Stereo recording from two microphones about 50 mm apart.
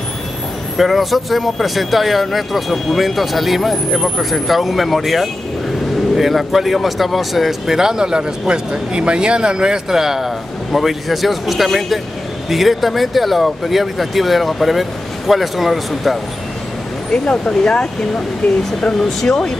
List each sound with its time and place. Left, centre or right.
0.7 s speech: centre
17.1 s speech: centre